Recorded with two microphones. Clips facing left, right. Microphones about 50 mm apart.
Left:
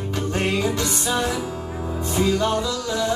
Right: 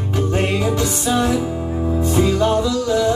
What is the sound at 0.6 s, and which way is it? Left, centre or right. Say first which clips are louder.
Music: right 3 dB; centre.